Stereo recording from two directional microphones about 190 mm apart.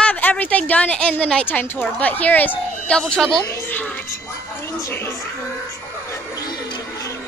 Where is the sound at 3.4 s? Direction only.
10° left (ahead or behind).